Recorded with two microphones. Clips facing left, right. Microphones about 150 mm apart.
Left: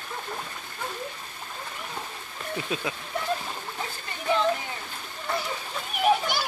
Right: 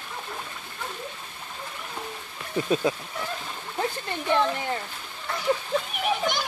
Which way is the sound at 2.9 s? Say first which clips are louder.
Right 7 dB; 35° right (ahead or behind).